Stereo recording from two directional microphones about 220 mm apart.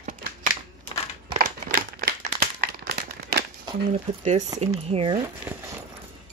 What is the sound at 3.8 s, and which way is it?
Speech, 30° right (ahead or behind).